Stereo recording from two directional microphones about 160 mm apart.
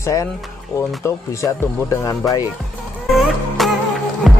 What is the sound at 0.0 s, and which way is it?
Speech, 20° left (ahead or behind).